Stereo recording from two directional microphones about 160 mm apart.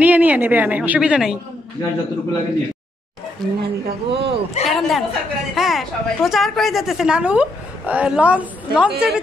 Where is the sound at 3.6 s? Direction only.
90° right.